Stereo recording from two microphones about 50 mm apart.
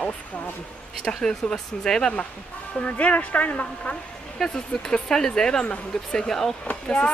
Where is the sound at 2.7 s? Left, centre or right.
Left.